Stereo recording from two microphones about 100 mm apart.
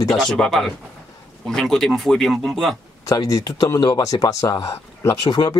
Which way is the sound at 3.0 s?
35° left (ahead or behind).